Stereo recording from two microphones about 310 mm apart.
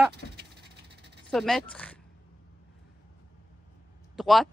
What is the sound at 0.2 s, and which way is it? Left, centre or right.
Crow, left.